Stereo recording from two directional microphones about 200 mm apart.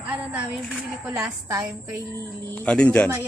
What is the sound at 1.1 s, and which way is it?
Speech, 15° right (ahead or behind).